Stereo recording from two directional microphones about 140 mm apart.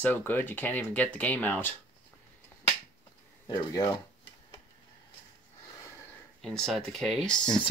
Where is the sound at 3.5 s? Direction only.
30° left (ahead or behind).